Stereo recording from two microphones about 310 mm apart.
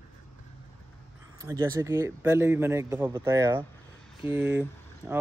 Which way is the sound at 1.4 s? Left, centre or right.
Centre.